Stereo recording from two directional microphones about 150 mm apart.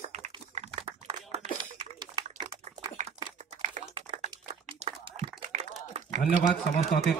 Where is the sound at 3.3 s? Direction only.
50° right (ahead or behind).